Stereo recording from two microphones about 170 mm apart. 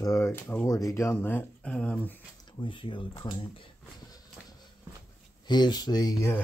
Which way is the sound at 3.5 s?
25° left (ahead or behind).